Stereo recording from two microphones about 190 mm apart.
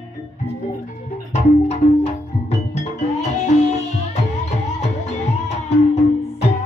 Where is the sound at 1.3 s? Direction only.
35° left (ahead or behind).